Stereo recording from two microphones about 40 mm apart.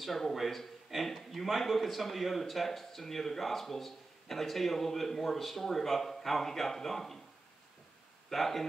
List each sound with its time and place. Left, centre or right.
0.0 s a man's voice: centre
8.3 s a man's voice: centre